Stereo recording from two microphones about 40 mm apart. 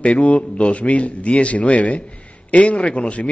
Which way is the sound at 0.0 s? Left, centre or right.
Left.